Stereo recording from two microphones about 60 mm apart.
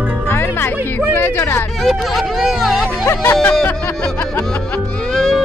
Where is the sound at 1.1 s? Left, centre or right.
Left.